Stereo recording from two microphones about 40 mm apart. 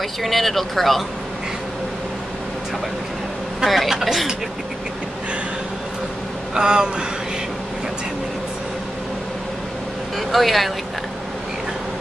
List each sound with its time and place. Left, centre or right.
0.2 s speech: centre
3.6 s speech: centre
6.5 s speech: centre
10.1 s speech: centre